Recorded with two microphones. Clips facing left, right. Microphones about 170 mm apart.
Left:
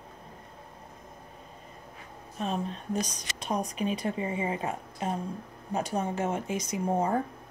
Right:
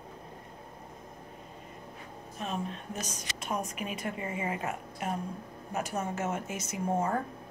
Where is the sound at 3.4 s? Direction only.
35° left (ahead or behind).